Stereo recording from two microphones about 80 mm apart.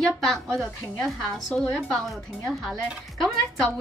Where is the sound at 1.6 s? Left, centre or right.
Centre.